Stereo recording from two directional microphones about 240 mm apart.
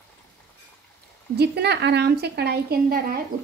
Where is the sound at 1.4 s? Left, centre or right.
Right.